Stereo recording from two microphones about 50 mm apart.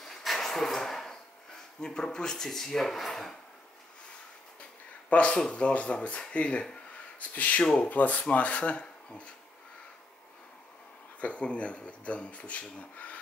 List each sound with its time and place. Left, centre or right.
0.0 s a sound: centre
1.8 s speech: centre
5.1 s speech: left
7.6 s speech: centre
7.9 s speech: left
11.1 s speech: left